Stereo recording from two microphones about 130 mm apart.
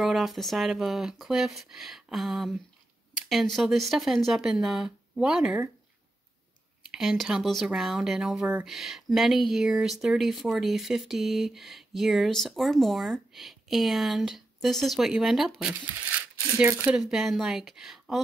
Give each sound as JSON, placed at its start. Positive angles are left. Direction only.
{"t": 0.0, "sound": "speech", "side_deg": 0}
{"t": 6.9, "sound": "speech", "side_deg": -5}
{"t": 15.7, "sound": "speech", "side_deg": -15}